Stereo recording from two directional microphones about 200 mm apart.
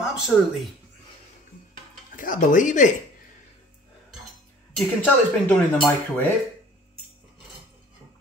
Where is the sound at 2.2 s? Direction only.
40° left (ahead or behind).